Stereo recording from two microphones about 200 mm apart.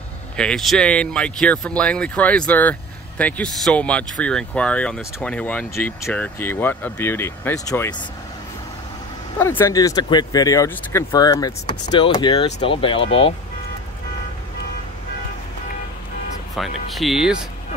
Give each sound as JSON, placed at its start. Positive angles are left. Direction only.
{"t": 0.4, "sound": "speech", "side_deg": 5}
{"t": 9.4, "sound": "speech", "side_deg": 10}
{"t": 16.5, "sound": "speech", "side_deg": 0}